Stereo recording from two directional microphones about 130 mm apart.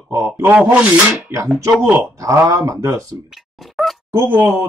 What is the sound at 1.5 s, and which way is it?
Speech, 10° right (ahead or behind).